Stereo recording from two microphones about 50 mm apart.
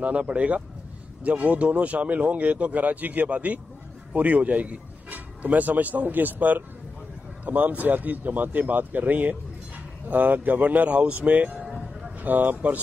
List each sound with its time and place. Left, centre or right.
0.0 s a man's voice: right
11.6 s a sound: centre
12.2 s speech: right